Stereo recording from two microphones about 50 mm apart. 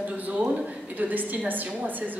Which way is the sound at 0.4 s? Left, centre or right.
Right.